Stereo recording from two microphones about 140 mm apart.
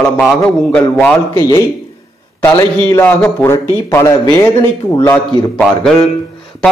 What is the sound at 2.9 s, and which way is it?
Speech, 20° left (ahead or behind).